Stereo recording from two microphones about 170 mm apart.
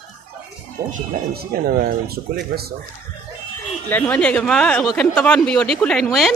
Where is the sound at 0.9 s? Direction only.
65° right (ahead or behind).